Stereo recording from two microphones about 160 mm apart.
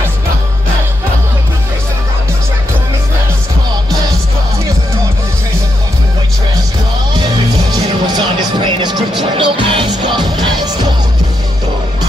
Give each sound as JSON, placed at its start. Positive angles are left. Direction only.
{"t": 7.7, "sound": "music", "side_deg": -25}